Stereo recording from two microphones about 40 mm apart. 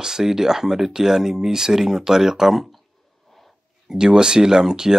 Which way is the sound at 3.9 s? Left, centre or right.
Centre.